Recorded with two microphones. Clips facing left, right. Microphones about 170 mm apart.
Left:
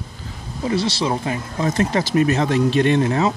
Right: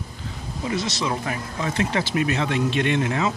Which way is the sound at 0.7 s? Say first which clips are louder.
Left 5 dB; 30° left (ahead or behind).